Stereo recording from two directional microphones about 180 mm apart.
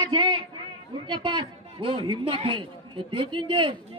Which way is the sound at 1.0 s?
25° right (ahead or behind).